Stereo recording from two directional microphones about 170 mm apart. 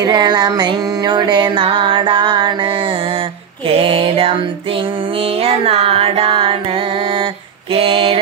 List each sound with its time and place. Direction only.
0.0 s music: 25° right (ahead or behind)
3.6 s a sound: 30° right (ahead or behind)
5.2 s music: 35° right (ahead or behind)